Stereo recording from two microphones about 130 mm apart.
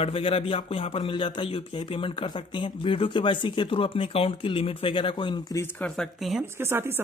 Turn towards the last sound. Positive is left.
turn(degrees=-20)  # may be behind; listen again after turning